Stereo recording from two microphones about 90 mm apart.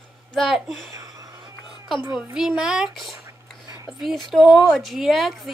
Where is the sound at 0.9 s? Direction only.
35° right (ahead or behind).